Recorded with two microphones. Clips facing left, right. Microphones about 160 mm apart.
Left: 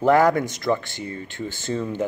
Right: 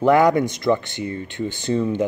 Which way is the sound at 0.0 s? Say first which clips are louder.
Right 2 dB; 15° right (ahead or behind).